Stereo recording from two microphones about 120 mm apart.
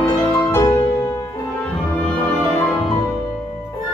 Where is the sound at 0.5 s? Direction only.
25° left (ahead or behind).